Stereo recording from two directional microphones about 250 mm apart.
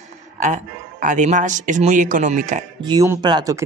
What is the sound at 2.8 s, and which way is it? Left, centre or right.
Speech, centre.